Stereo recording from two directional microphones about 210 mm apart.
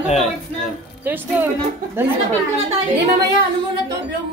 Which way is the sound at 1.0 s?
10° right (ahead or behind).